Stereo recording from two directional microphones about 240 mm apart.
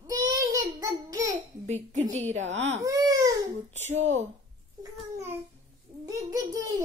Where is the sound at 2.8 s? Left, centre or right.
Centre.